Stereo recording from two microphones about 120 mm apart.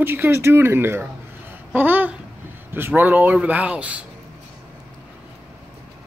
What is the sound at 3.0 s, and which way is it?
Speech, 15° right (ahead or behind).